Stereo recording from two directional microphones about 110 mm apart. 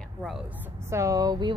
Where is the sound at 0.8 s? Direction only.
30° right (ahead or behind).